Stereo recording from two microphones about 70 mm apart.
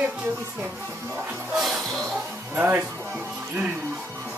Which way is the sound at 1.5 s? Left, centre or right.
Centre.